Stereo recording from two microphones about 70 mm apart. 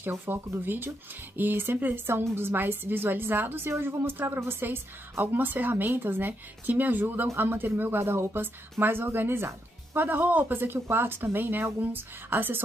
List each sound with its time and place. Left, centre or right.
0.1 s speech: right